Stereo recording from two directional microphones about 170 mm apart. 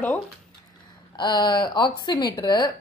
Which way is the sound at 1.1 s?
25° left (ahead or behind).